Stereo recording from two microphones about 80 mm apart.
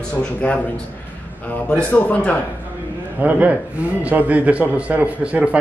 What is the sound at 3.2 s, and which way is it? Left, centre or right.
A man's voice, centre.